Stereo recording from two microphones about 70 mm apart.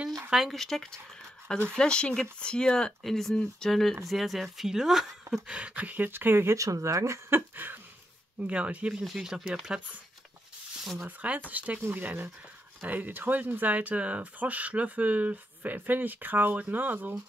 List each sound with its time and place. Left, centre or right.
0.3 s speech: centre
0.6 s speech: centre
5.5 s speech: centre
6.5 s speech: right
7.2 s speech: right
8.4 s speech: centre
9.0 s speech: centre
11.1 s speech: right